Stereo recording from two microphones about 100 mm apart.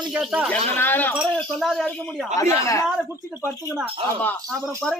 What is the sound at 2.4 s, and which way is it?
Speech, 30° left (ahead or behind).